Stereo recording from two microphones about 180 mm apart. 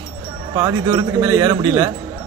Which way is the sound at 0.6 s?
20° right (ahead or behind).